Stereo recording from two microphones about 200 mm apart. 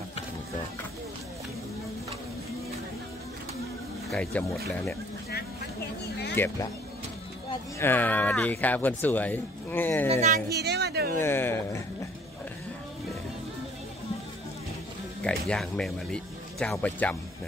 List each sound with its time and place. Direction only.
4.1 s speech: 5° left (ahead or behind)
6.3 s speech: 10° left (ahead or behind)
7.8 s speech: 10° left (ahead or behind)
10.5 s a woman's voice: 55° right (ahead or behind)
11.1 s speech: 10° left (ahead or behind)
15.2 s speech: 5° left (ahead or behind)